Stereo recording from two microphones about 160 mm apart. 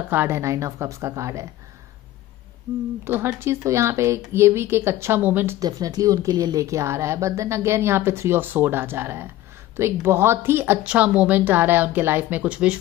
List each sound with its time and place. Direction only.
0.1 s a woman's voice: 15° right (ahead or behind)
3.1 s speech: 15° right (ahead or behind)
5.6 s speech: 25° right (ahead or behind); by 12.7 s 5° right (ahead or behind)